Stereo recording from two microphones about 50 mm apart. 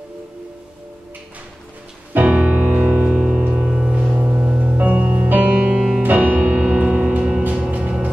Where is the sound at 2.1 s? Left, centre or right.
Right.